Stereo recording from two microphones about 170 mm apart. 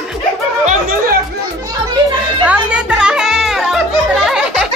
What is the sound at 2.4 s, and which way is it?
Music, 5° right (ahead or behind).